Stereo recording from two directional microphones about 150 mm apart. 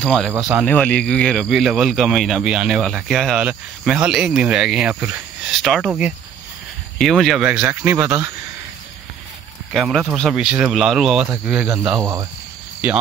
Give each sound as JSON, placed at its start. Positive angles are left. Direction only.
{"t": 0.0, "sound": "speech", "side_deg": 5}
{"t": 0.4, "sound": "speech", "side_deg": -5}
{"t": 0.7, "sound": "speech", "side_deg": 10}
{"t": 9.7, "sound": "speech", "side_deg": 0}
{"t": 12.0, "sound": "speech", "side_deg": -20}